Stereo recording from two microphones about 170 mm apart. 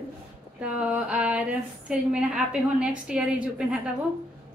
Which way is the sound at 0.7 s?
5° right (ahead or behind).